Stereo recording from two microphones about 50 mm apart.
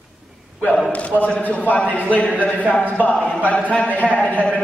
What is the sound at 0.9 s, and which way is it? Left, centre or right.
A man's voice, left.